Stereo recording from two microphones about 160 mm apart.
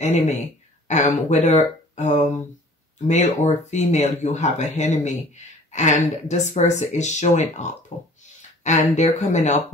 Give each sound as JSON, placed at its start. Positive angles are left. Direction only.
{"t": 0.0, "sound": "speech", "side_deg": 45}